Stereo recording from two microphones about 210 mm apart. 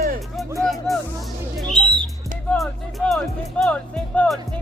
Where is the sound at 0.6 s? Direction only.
Centre (ahead or behind).